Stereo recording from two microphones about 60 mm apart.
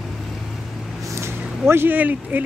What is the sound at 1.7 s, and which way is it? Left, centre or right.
Speech, right.